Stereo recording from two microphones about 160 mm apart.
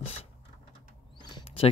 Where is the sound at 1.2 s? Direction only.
30° left (ahead or behind).